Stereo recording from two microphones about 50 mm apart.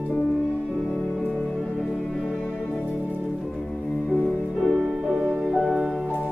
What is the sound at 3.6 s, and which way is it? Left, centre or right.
Music, centre.